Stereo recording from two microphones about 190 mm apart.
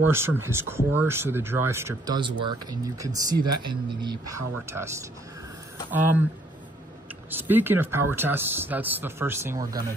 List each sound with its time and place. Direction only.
0.1 s speech: 10° right (ahead or behind)
7.2 s speech: 10° right (ahead or behind)